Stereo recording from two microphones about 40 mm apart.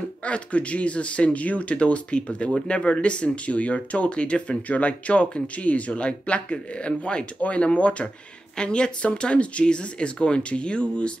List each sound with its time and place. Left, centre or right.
0.2 s speech: left
7.3 s speech: left